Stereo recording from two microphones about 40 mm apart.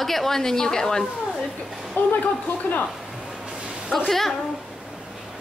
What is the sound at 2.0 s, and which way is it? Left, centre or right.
Speech, left.